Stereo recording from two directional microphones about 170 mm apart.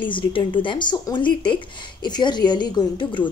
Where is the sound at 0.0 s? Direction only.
30° left (ahead or behind).